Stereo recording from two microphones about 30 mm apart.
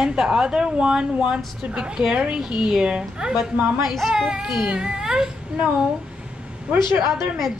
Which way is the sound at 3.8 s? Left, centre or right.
Centre.